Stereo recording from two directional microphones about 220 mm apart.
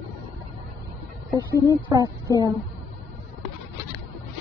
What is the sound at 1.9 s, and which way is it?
Speech, 15° right (ahead or behind).